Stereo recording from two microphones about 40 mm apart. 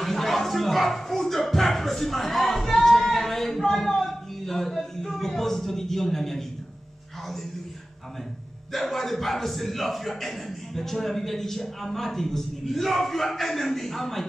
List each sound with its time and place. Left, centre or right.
0.0 s music: centre
8.7 s a man's voice: centre